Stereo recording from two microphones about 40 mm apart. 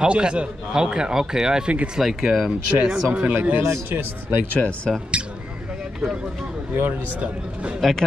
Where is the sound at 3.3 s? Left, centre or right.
Right.